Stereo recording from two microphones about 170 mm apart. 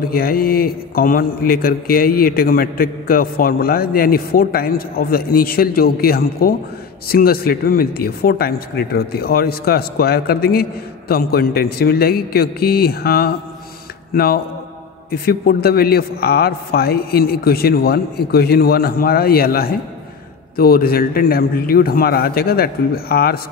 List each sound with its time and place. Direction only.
0.1 s a man's voice: 60° left (ahead or behind)